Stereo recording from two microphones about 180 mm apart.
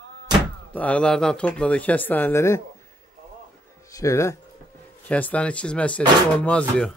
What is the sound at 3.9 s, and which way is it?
Speech, 15° left (ahead or behind).